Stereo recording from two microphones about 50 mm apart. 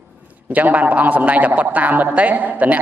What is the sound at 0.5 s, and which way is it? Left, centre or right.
A man's voice, right.